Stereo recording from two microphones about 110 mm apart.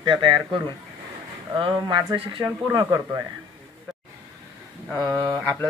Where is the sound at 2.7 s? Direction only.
30° right (ahead or behind).